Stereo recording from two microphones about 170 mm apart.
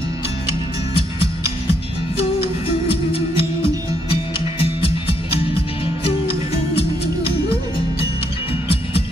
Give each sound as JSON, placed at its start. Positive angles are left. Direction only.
{"t": 0.5, "sound": "music", "side_deg": 30}
{"t": 2.9, "sound": "music", "side_deg": 35}